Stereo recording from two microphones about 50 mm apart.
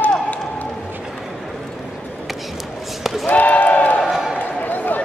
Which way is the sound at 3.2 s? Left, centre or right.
Left.